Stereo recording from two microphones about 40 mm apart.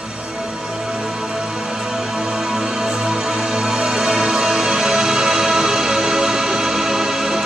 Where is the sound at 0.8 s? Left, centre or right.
Centre.